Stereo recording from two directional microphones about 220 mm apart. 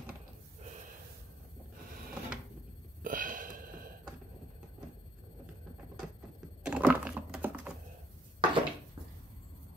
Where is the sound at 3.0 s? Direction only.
40° right (ahead or behind).